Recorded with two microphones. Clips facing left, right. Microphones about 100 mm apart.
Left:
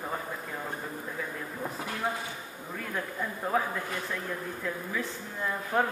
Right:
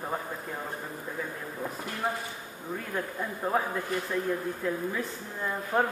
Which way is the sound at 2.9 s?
15° right (ahead or behind).